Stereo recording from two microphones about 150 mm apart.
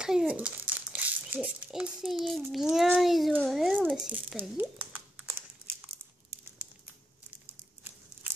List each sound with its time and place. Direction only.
0.0 s a child's voice: 5° right (ahead or behind)
4.4 s typing: 10° right (ahead or behind)
6.3 s crumpling: 15° right (ahead or behind)